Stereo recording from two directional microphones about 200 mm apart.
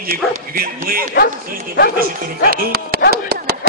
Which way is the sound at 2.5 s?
50° right (ahead or behind).